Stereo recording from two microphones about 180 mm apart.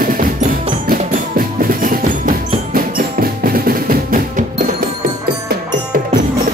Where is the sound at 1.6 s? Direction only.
50° right (ahead or behind).